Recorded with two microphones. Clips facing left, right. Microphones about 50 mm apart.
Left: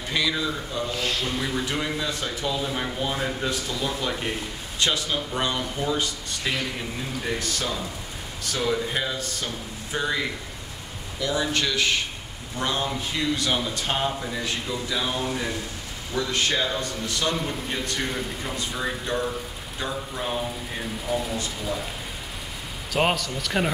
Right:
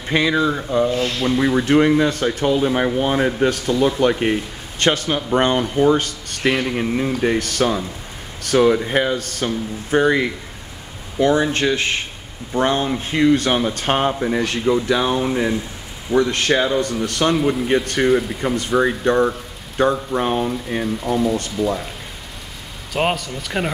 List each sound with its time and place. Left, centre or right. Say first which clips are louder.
0.1 s speech: right 9 dB; right
15.1 s speech: right 8 dB; right
16.1 s speech: right 9 dB; right
21.0 s speech: right 7 dB; centre
22.9 s a man's voice: right 3 dB; centre